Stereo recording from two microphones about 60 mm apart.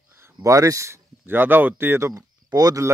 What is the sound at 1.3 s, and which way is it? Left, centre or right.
Speech, right.